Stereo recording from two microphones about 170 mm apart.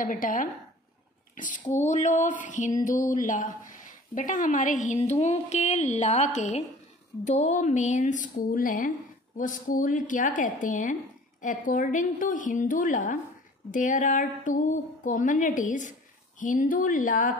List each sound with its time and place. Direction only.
0.0 s a woman's voice: 55° left (ahead or behind)